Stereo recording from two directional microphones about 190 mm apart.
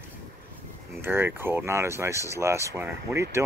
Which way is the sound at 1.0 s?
10° right (ahead or behind).